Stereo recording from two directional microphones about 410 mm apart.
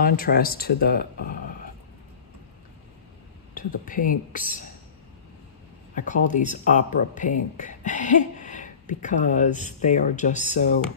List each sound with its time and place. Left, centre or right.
0.0 s speech: left
3.5 s speech: centre
5.9 s speech: centre